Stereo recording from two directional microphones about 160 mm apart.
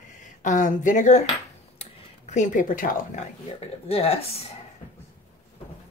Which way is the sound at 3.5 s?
40° left (ahead or behind).